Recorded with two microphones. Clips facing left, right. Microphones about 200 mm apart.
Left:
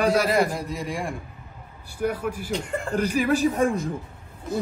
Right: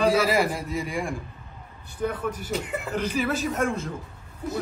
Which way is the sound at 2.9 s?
15° left (ahead or behind).